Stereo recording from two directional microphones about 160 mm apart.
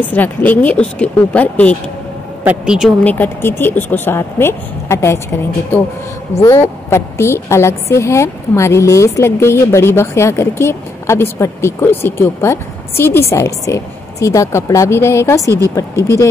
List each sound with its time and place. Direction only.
0.1 s a woman's voice: 10° left (ahead or behind)
2.4 s speech: 5° right (ahead or behind)
3.0 s a woman's voice: 10° left (ahead or behind)
6.4 s a woman's voice: 15° left (ahead or behind)